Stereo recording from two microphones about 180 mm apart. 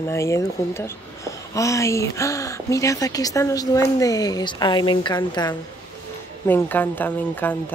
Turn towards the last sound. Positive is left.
turn(degrees=10)  # may be behind; listen again after turning